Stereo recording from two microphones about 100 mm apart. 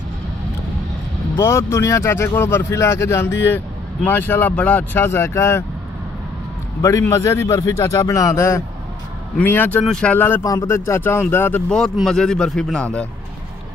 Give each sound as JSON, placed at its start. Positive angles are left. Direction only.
{"t": 1.3, "sound": "speech", "side_deg": 25}
{"t": 6.8, "sound": "speech", "side_deg": 30}
{"t": 9.4, "sound": "speech", "side_deg": 20}
{"t": 9.8, "sound": "a man's voice", "side_deg": 5}
{"t": 10.1, "sound": "speech", "side_deg": 20}
{"t": 10.4, "sound": "speech", "side_deg": 30}
{"t": 11.7, "sound": "a man's voice", "side_deg": 5}